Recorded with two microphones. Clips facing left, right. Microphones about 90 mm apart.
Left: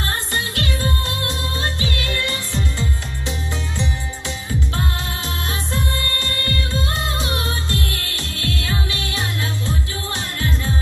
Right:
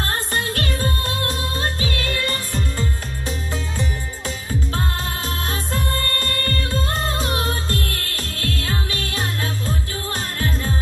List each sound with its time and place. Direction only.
0.1 s music: 45° right (ahead or behind)
5.5 s music: 45° right (ahead or behind)